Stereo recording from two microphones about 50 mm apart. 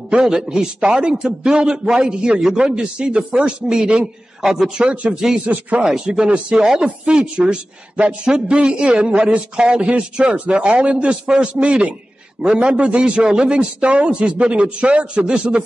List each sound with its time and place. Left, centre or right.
0.1 s a man's voice: centre
5.4 s a man's voice: right
5.8 s a man's voice: centre